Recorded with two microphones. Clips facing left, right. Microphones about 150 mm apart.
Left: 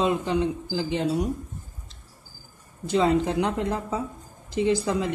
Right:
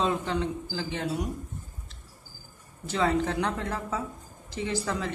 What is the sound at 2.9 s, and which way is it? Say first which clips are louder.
Speech: left 4 dB; 20° left (ahead or behind).